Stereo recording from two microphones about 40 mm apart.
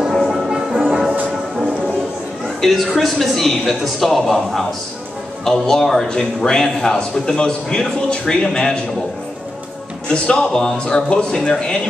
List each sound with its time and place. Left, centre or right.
0.1 s music: centre
2.6 s a man's voice: centre; by 8.7 s left
10.0 s a man's voice: left